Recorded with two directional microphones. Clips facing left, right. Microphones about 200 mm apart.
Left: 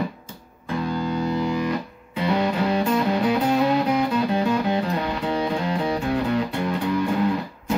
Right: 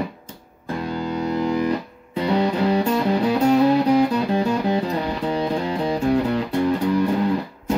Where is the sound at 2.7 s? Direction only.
30° right (ahead or behind).